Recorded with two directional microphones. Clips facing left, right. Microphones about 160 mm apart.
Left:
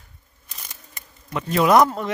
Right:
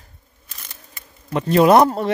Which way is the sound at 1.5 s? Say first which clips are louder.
Right 4 dB; 30° right (ahead or behind).